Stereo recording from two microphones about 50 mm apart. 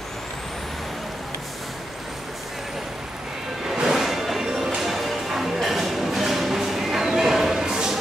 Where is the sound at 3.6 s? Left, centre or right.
Centre.